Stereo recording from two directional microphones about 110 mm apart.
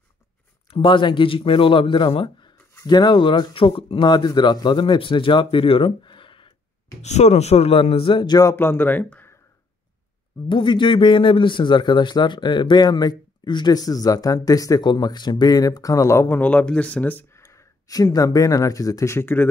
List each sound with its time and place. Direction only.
0.7 s speech: 50° left (ahead or behind)
7.0 s speech: 90° left; by 8.4 s 50° left (ahead or behind)
8.5 s speech: 20° left (ahead or behind)
10.5 s a man's voice: 50° left (ahead or behind); by 17.4 s 15° left (ahead or behind)
17.4 s speech: 25° left (ahead or behind)